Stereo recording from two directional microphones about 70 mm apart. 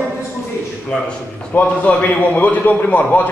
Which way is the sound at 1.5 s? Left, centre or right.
Left.